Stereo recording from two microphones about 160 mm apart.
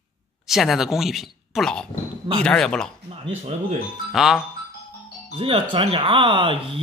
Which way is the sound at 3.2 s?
40° right (ahead or behind).